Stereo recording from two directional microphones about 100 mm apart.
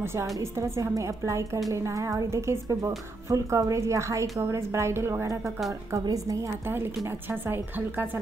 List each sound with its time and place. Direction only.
0.0 s a woman's voice: 25° right (ahead or behind)
7.1 s a woman's voice: 25° right (ahead or behind)